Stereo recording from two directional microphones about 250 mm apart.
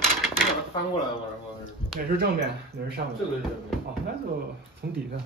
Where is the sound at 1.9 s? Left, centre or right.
Centre.